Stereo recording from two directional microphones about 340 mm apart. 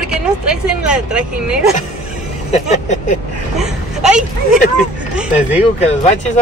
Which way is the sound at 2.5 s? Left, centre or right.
Left.